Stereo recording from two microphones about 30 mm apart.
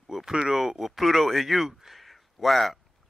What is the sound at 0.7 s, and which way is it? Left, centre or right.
Speech, centre.